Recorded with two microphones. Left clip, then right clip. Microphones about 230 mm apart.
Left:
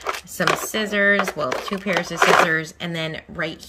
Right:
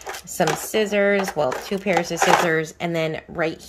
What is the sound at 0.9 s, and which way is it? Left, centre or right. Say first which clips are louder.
Speech: left 4 dB; centre.